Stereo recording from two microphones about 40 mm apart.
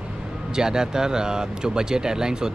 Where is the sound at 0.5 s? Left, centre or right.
Centre.